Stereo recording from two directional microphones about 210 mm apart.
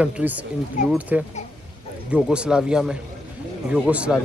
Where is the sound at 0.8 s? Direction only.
40° left (ahead or behind).